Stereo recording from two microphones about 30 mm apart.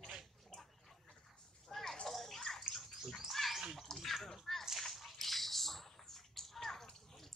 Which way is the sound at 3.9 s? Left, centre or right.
Centre.